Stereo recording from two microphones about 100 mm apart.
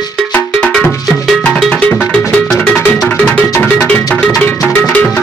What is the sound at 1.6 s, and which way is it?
Music, centre (ahead or behind).